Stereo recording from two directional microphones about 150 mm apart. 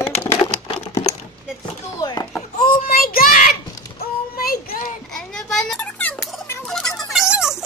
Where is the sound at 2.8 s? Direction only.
75° left (ahead or behind).